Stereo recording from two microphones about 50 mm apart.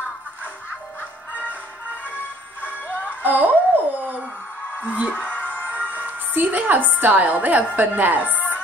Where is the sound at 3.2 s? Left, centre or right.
Right.